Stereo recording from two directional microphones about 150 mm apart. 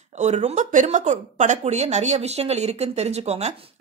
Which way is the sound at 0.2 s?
50° right (ahead or behind).